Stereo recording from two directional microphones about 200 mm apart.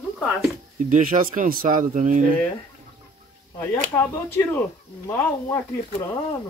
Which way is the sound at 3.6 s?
10° left (ahead or behind).